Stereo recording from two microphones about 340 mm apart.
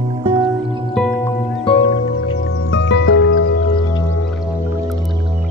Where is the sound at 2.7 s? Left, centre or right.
Left.